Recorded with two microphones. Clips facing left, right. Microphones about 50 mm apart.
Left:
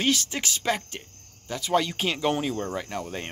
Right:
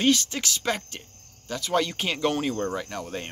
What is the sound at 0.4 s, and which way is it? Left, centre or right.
Speech, left.